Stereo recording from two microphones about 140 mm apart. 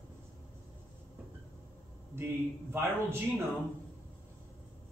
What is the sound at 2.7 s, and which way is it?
Speech, 15° right (ahead or behind).